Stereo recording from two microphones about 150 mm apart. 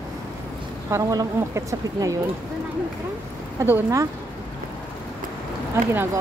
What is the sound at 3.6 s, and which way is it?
Speech, 15° right (ahead or behind).